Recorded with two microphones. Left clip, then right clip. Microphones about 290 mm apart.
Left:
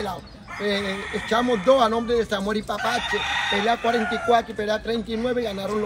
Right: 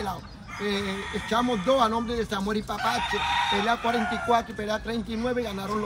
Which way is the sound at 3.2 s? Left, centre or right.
Right.